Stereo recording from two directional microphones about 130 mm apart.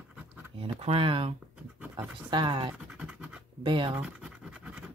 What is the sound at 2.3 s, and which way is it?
Speech, 40° right (ahead or behind).